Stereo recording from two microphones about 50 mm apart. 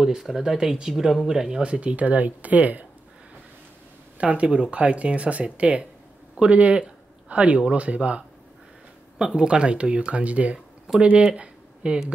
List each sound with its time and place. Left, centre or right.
0.0 s speech: centre
1.6 s speech: right
4.2 s speech: right
9.2 s speech: centre